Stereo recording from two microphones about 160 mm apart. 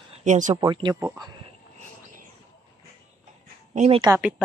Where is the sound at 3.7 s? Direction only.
45° right (ahead or behind).